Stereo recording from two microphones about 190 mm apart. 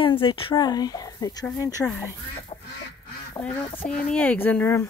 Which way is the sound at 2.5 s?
30° left (ahead or behind).